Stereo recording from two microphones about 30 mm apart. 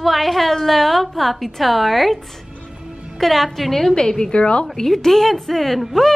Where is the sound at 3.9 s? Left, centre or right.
Left.